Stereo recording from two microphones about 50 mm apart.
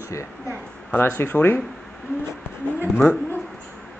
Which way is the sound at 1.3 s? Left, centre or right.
Left.